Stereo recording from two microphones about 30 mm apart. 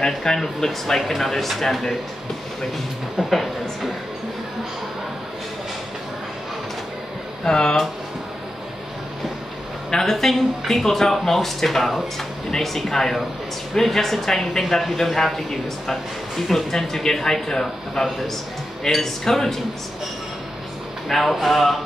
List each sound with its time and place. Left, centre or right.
0.0 s speech: centre
3.3 s a woman's voice: centre
7.4 s speech: left
9.8 s speech: centre
10.1 s a woman's voice: centre
14.8 s a woman's voice: centre; by 18.0 s left
18.9 s speech: centre
21.1 s a woman's voice: centre